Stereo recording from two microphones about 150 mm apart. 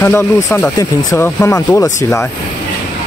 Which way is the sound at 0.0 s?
15° left (ahead or behind).